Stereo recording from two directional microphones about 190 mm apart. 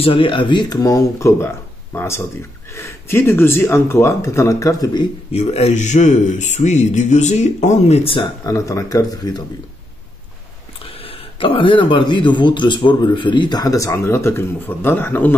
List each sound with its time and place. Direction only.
0.0 s speech: 25° left (ahead or behind)
5.3 s a man's voice: 35° left (ahead or behind)
8.5 s speech: 15° left (ahead or behind)
11.1 s speech: 25° left (ahead or behind); by 15.3 s 10° left (ahead or behind)